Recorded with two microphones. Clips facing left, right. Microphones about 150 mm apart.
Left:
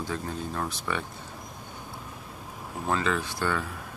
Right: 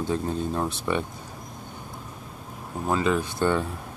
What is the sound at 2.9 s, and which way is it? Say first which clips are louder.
Speech: right 4 dB; 15° right (ahead or behind).